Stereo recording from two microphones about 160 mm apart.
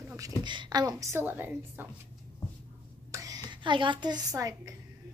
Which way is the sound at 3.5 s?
30° right (ahead or behind).